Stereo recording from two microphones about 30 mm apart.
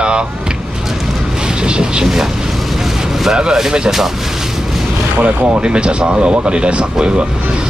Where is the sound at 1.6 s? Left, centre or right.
Right.